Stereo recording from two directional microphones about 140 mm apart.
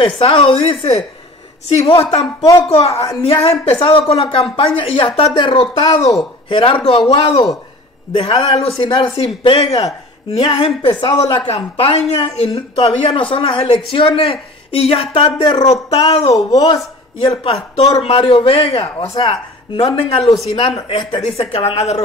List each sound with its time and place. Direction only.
0.2 s a woman's voice: 40° left (ahead or behind)
2.0 s speech: 30° left (ahead or behind)
3.3 s a woman's voice: 45° left (ahead or behind)
15.6 s a woman's voice: 50° left (ahead or behind)
16.5 s speech: 25° left (ahead or behind)
17.2 s a woman's voice: 40° left (ahead or behind)